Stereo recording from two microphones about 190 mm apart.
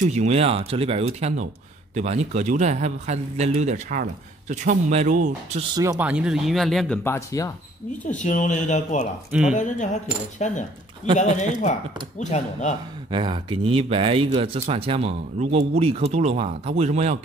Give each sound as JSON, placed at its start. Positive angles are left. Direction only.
{"t": 0.0, "sound": "speech", "side_deg": -35}
{"t": 5.8, "sound": "speech", "side_deg": -15}
{"t": 8.1, "sound": "speech", "side_deg": 40}
{"t": 9.3, "sound": "speech", "side_deg": -5}
{"t": 9.6, "sound": "speech", "side_deg": 40}
{"t": 13.1, "sound": "speech", "side_deg": -25}